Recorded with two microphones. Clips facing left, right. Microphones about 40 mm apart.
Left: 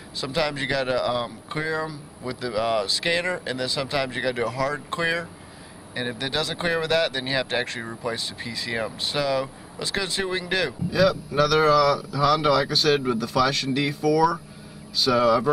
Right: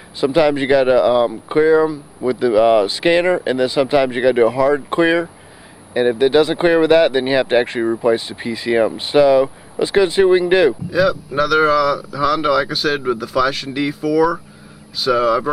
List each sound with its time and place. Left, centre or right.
0.2 s speech: right
10.9 s speech: centre